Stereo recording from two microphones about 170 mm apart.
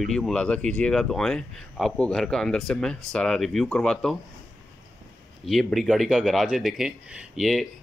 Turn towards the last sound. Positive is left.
turn(degrees=0)  # may be behind; listen again after turning